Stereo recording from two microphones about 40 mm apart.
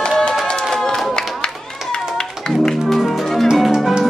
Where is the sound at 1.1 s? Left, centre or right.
Centre.